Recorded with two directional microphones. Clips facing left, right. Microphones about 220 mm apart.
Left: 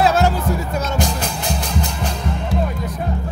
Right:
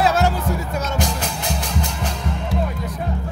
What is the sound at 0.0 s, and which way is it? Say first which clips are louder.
Music: left 2 dB; 30° left (ahead or behind).